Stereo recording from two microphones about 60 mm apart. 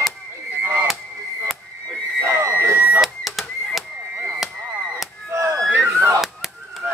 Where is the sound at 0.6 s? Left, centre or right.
Right.